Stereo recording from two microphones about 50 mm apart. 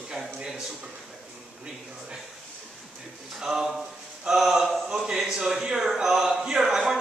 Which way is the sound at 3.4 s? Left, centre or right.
Centre.